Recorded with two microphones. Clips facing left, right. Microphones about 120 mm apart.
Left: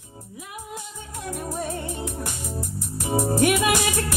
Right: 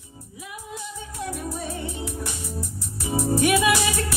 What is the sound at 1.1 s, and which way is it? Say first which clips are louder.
Music: left 1 dB; 50° left (ahead or behind).